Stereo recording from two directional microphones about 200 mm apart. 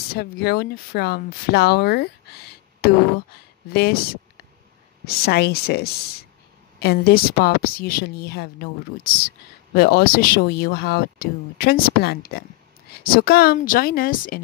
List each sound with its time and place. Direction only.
0.1 s speech: 50° left (ahead or behind)